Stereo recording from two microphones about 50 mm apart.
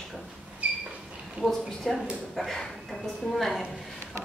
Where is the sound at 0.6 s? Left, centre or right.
Right.